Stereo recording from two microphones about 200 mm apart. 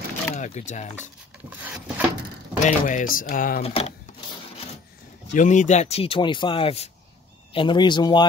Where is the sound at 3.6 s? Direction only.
30° left (ahead or behind).